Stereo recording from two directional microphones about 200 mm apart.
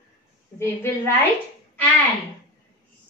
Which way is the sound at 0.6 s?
15° left (ahead or behind).